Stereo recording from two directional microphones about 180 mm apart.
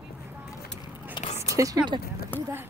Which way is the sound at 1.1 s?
35° left (ahead or behind).